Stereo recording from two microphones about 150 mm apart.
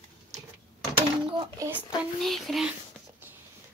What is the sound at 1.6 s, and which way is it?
Speech, 20° right (ahead or behind).